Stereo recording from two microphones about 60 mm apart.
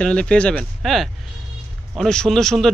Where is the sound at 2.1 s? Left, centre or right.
Centre.